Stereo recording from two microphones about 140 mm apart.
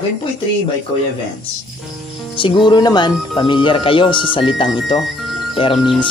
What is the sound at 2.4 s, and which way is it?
Speech, 35° left (ahead or behind).